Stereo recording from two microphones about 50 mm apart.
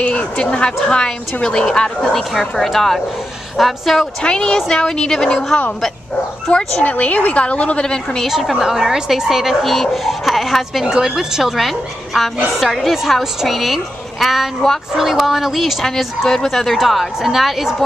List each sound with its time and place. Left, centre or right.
0.0 s a woman's voice: centre
2.3 s speech: centre
4.2 s a woman's voice: centre
6.5 s a woman's voice: left
7.8 s a woman's voice: centre
8.3 s speech: centre
10.9 s a woman's voice: centre